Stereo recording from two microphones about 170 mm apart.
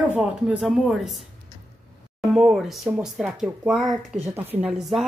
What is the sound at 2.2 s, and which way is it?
Speech, centre (ahead or behind).